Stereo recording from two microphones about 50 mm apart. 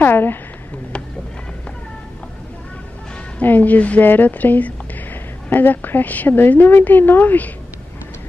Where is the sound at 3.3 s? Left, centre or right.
Left.